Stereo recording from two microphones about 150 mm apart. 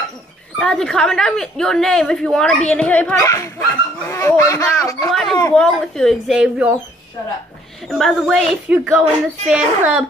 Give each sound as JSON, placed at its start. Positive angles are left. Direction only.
{"t": 0.6, "sound": "a woman's voice", "side_deg": 5}
{"t": 3.2, "sound": "speech", "side_deg": 20}
{"t": 5.1, "sound": "a woman's voice", "side_deg": 5}
{"t": 7.9, "sound": "a woman's voice", "side_deg": 0}